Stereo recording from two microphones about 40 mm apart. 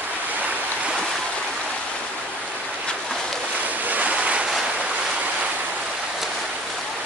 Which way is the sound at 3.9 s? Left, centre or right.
Right.